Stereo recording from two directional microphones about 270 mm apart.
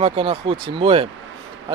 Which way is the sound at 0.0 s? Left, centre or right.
Centre.